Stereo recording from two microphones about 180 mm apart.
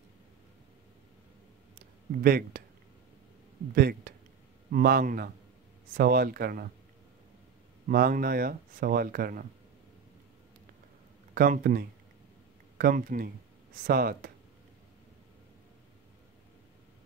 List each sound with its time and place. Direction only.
2.2 s speech: 55° right (ahead or behind)
3.7 s speech: 55° right (ahead or behind)
7.9 s speech: 55° right (ahead or behind)
11.3 s speech: 55° right (ahead or behind)